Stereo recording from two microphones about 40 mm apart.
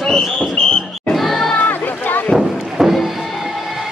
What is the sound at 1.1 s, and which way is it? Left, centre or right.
Crowd, centre.